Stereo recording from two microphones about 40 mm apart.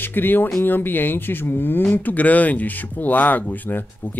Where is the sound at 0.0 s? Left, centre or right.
Left.